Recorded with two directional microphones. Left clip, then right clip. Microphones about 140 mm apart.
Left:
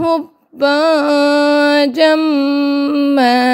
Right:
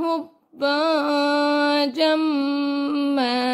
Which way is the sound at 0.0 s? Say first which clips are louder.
Left 9 dB; 40° left (ahead or behind).